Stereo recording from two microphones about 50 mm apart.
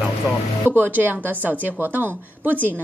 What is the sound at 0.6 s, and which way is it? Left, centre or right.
A woman's voice, right.